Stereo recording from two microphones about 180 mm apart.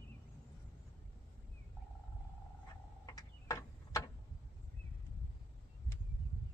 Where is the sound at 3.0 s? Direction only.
20° left (ahead or behind).